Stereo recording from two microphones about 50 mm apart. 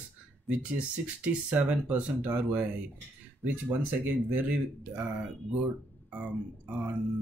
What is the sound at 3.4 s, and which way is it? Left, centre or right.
Speech, right.